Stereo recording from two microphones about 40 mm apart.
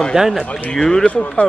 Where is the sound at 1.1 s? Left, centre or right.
Left.